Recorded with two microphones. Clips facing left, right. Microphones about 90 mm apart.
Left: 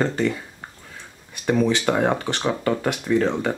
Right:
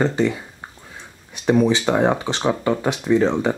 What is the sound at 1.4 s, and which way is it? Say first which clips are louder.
Speech: right 3 dB; 15° right (ahead or behind).